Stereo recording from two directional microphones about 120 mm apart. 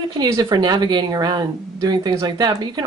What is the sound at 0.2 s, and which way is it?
Speech, 35° right (ahead or behind).